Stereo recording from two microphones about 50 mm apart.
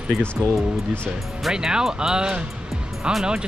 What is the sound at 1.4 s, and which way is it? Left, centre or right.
Speech, centre.